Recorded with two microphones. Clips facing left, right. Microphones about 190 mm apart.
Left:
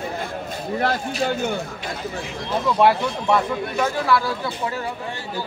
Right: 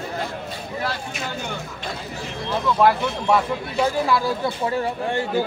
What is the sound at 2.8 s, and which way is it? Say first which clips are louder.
Speech: left 1 dB; centre (ahead or behind).